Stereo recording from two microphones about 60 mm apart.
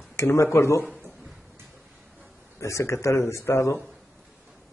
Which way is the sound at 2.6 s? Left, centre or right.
Left.